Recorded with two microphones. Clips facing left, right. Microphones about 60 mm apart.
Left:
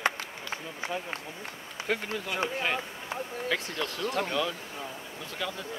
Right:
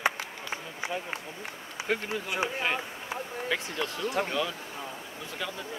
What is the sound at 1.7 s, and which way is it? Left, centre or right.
Speech, centre.